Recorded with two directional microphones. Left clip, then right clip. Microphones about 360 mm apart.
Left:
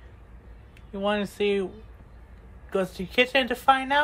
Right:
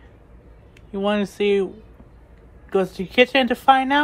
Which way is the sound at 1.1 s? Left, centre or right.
Centre.